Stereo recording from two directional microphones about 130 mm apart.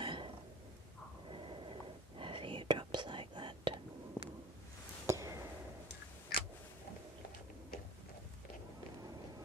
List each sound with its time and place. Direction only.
0.0 s burping: 40° right (ahead or behind)
1.3 s whispering: 40° right (ahead or behind)
5.0 s a sound: 25° right (ahead or behind)